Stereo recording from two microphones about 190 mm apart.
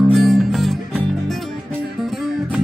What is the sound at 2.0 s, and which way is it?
Guitar, centre (ahead or behind).